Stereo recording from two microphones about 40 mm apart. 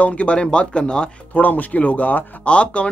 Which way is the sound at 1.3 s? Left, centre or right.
Left.